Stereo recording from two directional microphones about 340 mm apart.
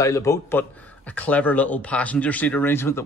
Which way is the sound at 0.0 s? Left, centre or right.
Centre.